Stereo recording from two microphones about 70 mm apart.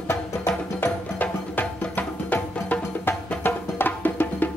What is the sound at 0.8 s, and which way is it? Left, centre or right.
Music, left.